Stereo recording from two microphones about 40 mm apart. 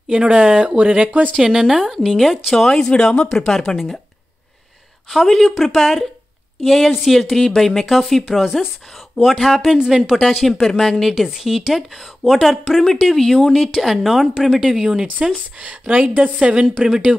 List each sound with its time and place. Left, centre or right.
0.1 s speech: right
1.4 s a woman's voice: centre
2.5 s a woman's voice: centre
5.1 s a woman's voice: centre
9.8 s a woman's voice: centre
10.2 s a woman's voice: centre
12.8 s a woman's voice: centre
15.6 s a woman's voice: right
16.9 s a woman's voice: centre